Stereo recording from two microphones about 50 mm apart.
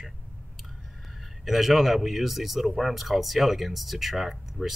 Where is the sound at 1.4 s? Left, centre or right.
Centre.